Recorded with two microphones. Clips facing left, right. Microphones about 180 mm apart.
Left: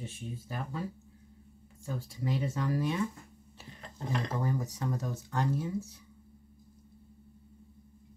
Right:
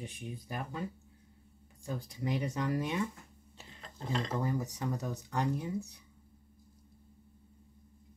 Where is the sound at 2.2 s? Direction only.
15° right (ahead or behind).